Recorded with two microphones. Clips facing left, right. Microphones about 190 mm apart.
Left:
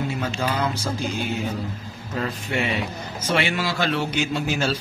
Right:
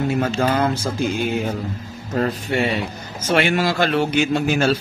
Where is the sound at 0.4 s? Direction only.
50° right (ahead or behind).